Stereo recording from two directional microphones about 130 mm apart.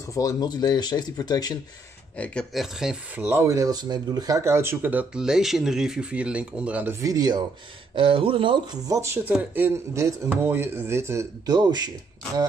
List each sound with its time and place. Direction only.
0.1 s speech: 25° left (ahead or behind)
2.1 s speech: 10° left (ahead or behind)
2.5 s speech: 5° right (ahead or behind)
3.2 s speech: 15° right (ahead or behind)
7.0 s speech: 30° right (ahead or behind)
7.9 s speech: 40° right (ahead or behind)
8.8 s speech: 25° right (ahead or behind)